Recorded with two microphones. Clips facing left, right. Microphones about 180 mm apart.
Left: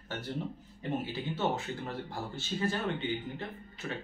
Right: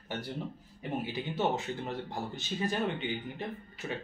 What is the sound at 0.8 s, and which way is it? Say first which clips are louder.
Speech: even; 15° right (ahead or behind).